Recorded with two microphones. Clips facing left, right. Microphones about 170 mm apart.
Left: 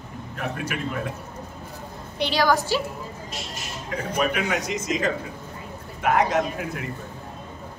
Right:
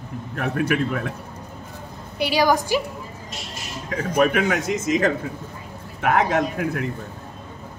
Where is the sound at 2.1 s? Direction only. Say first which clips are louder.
Right 2 dB; 10° right (ahead or behind).